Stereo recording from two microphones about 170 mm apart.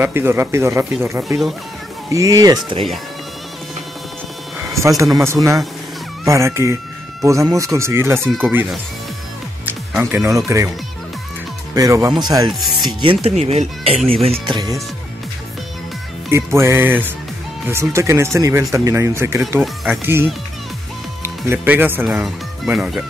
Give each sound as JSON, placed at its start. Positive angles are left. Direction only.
{"t": 0.0, "sound": "speech", "side_deg": -15}
{"t": 4.6, "sound": "a sound", "side_deg": -20}
{"t": 5.1, "sound": "speech", "side_deg": -15}
{"t": 9.7, "sound": "speech", "side_deg": -10}
{"t": 11.7, "sound": "speech", "side_deg": -20}
{"t": 12.5, "sound": "speech", "side_deg": 0}
{"t": 13.0, "sound": "speech", "side_deg": -35}
{"t": 16.3, "sound": "speech", "side_deg": -15}
{"t": 19.6, "sound": "speech", "side_deg": 0}
{"t": 21.2, "sound": "speech", "side_deg": -10}